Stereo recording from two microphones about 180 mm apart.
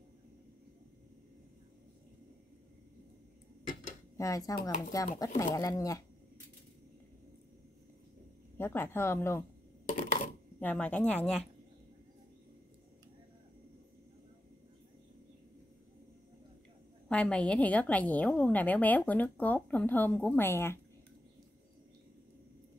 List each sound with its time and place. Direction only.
4.2 s speech: 20° left (ahead or behind)
8.5 s a woman's voice: 15° left (ahead or behind)
9.8 s coin: 45° left (ahead or behind)
10.6 s a woman's voice: 10° left (ahead or behind)
17.1 s a woman's voice: 5° left (ahead or behind)